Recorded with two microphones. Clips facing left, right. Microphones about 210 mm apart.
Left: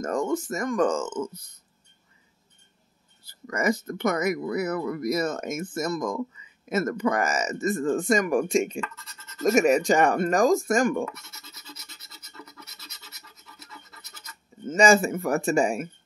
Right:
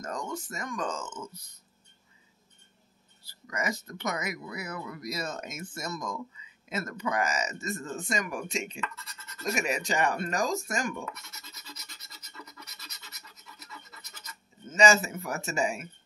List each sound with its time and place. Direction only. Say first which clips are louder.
0.0 s speech: left 10 dB; 50° left (ahead or behind)
3.4 s speech: left 8 dB; 50° left (ahead or behind)
11.1 s scratch: left 2 dB; 5° left (ahead or behind)
14.7 s speech: left 5 dB; 50° left (ahead or behind)